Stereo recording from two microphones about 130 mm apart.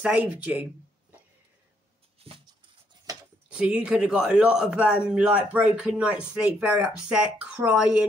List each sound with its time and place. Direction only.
0.0 s a man's voice: 10° right (ahead or behind)
2.1 s a sound: 50° right (ahead or behind)
3.4 s a man's voice: 10° right (ahead or behind)